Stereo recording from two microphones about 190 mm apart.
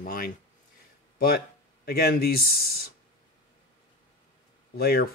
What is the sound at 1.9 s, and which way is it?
Speech, 55° left (ahead or behind).